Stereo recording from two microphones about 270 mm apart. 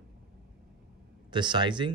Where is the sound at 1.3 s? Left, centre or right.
Centre.